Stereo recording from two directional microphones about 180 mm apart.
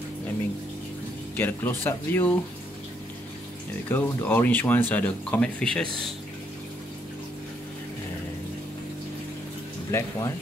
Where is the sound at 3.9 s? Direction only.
10° left (ahead or behind).